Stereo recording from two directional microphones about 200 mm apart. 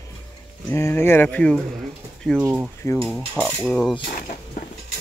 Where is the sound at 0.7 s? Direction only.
10° left (ahead or behind).